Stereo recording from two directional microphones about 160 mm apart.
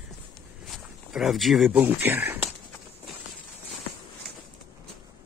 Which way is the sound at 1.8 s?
15° right (ahead or behind).